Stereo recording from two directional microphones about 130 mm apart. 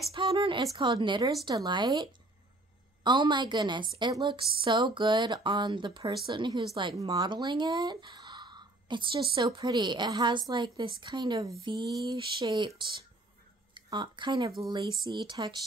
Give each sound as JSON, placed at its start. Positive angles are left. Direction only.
{"t": 0.4, "sound": "a woman's voice", "side_deg": -40}